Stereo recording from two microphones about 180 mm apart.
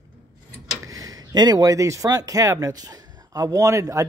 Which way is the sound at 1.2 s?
20° right (ahead or behind).